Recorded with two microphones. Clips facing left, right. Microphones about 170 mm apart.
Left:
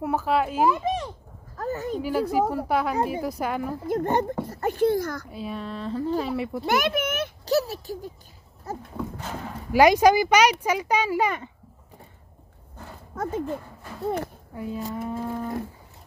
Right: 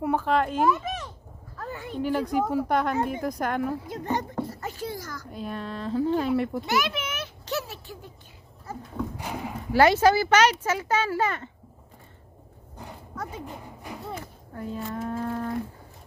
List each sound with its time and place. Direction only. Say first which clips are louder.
0.0 s speech: even; 5° left (ahead or behind)
0.8 s speech: left 7 dB; 30° left (ahead or behind)
1.6 s a sound: left 7 dB; 40° left (ahead or behind)
2.0 s speech: even; 5° left (ahead or behind)
3.8 s a child's voice: left 6 dB; 50° left (ahead or behind)
5.3 s speech: left 1 dB; centre (ahead or behind)
6.6 s a child's voice: left 4 dB; 50° left (ahead or behind)
7.4 s speech: left 9 dB; 35° left (ahead or behind)
9.1 s speech: right 1 dB; 15° right (ahead or behind)
9.7 s speech: left 2 dB; 15° left (ahead or behind)
13.1 s speech: left 8 dB; 50° left (ahead or behind)
13.5 s a sound: left 6 dB; 15° right (ahead or behind)
14.5 s speech: even; 10° left (ahead or behind)